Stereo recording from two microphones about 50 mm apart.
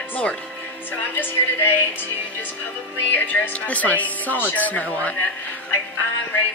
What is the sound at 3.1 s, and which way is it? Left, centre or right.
Speech, left.